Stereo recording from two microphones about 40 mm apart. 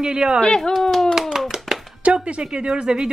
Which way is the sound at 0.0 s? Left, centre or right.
Right.